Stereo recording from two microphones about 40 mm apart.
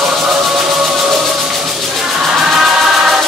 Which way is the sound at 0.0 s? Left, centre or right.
Centre.